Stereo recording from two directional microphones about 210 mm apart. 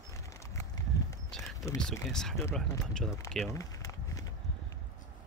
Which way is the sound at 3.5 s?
15° left (ahead or behind).